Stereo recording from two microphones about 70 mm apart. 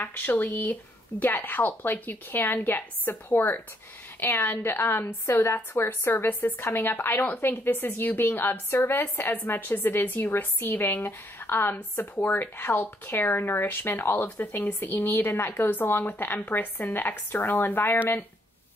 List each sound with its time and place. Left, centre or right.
0.0 s a woman's voice: left